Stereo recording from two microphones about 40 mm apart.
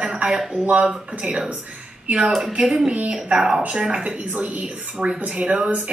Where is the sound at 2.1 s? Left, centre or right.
Right.